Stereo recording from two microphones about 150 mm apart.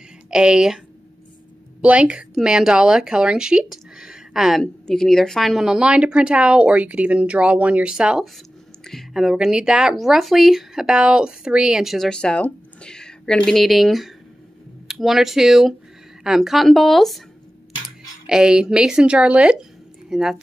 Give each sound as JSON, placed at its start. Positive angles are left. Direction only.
{"t": 0.3, "sound": "a woman's voice", "side_deg": -5}